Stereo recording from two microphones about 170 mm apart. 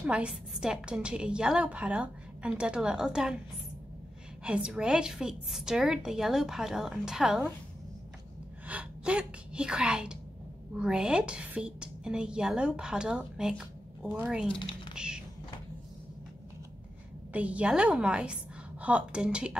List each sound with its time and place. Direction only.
0.0 s a woman's voice: 5° right (ahead or behind)
4.5 s a woman's voice: 5° right (ahead or behind)
8.6 s a woman's voice: 5° right (ahead or behind)
14.5 s typing: 30° left (ahead or behind)
15.0 s cupboard open or close: 5° right (ahead or behind)
17.3 s a woman's voice: 10° right (ahead or behind)